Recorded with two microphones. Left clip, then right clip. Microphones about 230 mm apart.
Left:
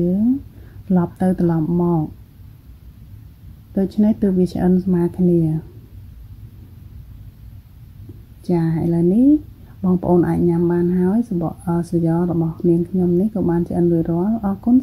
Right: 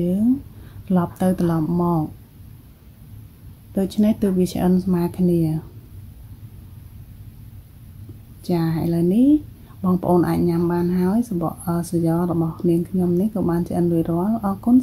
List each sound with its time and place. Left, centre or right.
0.8 s speech: centre
3.7 s speech: centre
8.5 s a woman's voice: centre